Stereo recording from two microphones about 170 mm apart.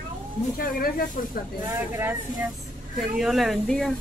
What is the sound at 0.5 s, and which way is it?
Speech, 60° left (ahead or behind).